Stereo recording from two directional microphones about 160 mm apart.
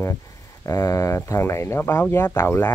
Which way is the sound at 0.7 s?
20° left (ahead or behind).